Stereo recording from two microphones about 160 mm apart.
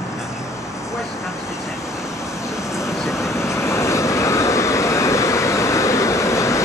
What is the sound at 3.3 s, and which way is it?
Vehicle, 15° left (ahead or behind).